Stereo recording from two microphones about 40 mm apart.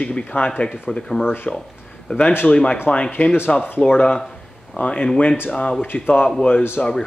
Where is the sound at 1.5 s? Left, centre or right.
Left.